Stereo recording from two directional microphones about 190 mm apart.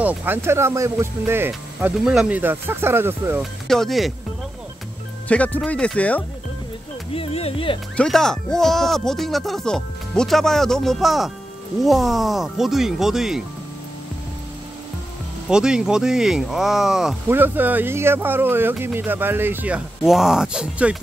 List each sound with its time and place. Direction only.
0.0 s speech: 10° right (ahead or behind)
3.6 s speech: centre (ahead or behind)
5.3 s speech: 5° left (ahead or behind)
7.2 s speech: 30° left (ahead or behind)
7.9 s speech: 5° left (ahead or behind)
15.4 s speech: 5° right (ahead or behind)